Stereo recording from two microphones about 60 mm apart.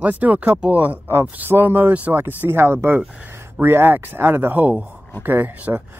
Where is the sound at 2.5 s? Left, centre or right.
Right.